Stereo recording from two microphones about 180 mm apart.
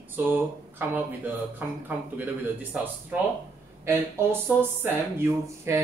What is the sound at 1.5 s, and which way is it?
Speech, 10° right (ahead or behind).